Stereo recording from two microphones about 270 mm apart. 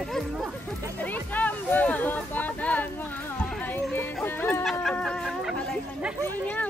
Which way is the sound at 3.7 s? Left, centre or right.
Centre.